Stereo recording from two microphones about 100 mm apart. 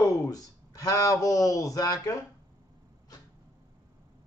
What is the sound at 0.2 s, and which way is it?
Speech, 35° left (ahead or behind).